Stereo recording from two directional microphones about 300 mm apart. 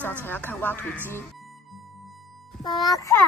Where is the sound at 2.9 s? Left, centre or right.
Centre.